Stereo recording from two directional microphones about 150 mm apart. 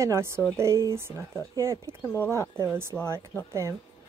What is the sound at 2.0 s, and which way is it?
Speech, 10° left (ahead or behind).